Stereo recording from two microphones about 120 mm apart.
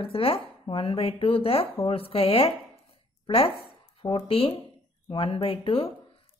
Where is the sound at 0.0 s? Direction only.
50° left (ahead or behind).